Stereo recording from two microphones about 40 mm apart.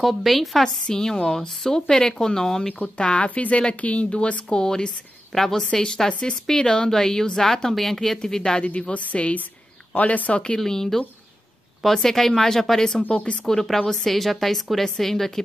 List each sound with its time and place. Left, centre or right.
0.0 s a woman's voice: centre
0.8 s a woman's voice: centre
3.0 s a woman's voice: left
10.6 s a woman's voice: centre
13.1 s speech: left
13.5 s a woman's voice: centre